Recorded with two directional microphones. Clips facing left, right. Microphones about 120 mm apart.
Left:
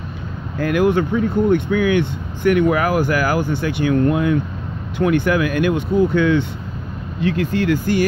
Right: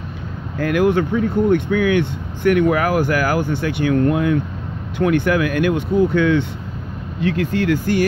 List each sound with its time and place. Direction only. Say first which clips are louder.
0.6 s speech: even; 20° left (ahead or behind)